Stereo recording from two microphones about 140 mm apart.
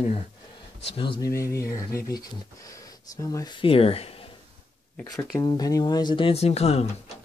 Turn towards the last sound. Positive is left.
turn(degrees=50)  # may be behind; listen again after turning